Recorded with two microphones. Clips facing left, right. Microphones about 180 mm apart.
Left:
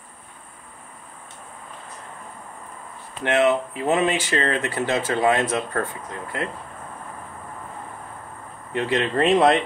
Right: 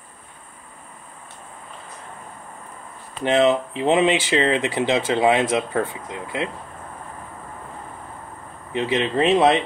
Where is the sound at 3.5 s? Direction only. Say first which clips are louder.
Right 2 dB; 25° right (ahead or behind).